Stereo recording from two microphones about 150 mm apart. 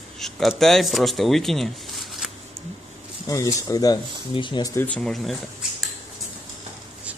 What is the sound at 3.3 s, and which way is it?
Speech, 20° left (ahead or behind).